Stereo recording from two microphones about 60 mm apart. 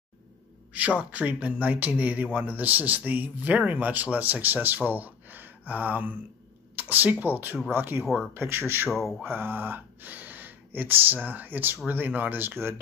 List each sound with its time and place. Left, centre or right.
0.7 s speech: right